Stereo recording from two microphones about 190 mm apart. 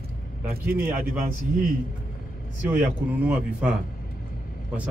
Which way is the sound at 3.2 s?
5° right (ahead or behind).